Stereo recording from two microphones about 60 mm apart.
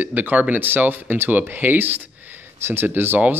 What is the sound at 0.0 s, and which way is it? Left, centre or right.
Speech, right.